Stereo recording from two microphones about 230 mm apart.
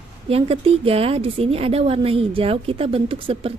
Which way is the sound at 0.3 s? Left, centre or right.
Right.